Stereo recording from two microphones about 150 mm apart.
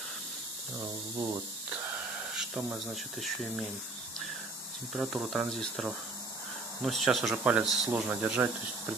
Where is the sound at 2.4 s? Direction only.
5° right (ahead or behind).